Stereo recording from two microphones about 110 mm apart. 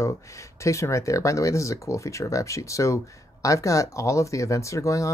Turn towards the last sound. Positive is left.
turn(degrees=30)  # may be behind; listen again after turning